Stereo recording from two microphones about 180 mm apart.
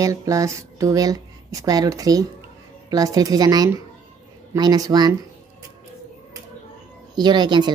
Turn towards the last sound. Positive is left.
turn(degrees=-25)  # may be behind; listen again after turning